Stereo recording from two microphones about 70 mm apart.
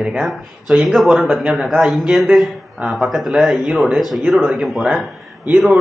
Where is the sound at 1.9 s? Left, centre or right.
Centre.